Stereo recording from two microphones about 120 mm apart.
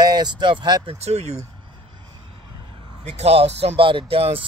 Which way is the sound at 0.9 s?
65° right (ahead or behind).